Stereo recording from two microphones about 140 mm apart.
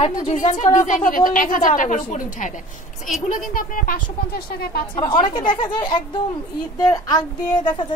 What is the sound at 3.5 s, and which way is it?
A woman's voice, 85° left.